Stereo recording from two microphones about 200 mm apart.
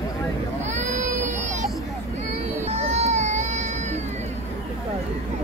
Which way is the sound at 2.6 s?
30° right (ahead or behind).